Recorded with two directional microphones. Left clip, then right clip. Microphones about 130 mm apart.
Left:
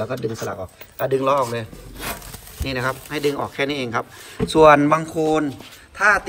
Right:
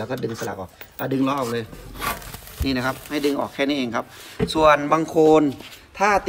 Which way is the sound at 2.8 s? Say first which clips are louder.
Left 3 dB; centre (ahead or behind).